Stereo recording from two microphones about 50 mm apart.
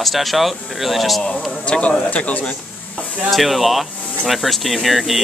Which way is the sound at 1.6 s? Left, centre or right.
Left.